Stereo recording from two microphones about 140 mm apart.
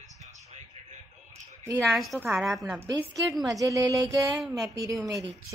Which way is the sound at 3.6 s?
25° right (ahead or behind).